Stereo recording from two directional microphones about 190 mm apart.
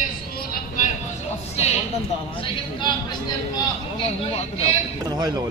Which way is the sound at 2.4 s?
25° left (ahead or behind).